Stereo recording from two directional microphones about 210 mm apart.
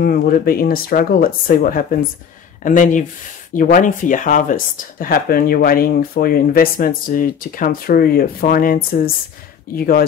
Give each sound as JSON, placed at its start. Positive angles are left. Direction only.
{"t": 0.0, "sound": "speech", "side_deg": 45}